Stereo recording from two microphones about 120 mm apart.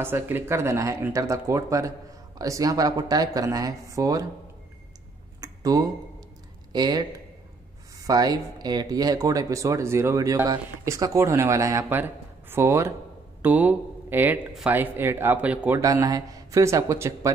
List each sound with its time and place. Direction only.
0.0 s speech: 20° right (ahead or behind)
5.4 s a sound: 30° right (ahead or behind)
6.7 s speech: 35° right (ahead or behind); by 15.8 s 10° right (ahead or behind)
15.8 s speech: 30° right (ahead or behind)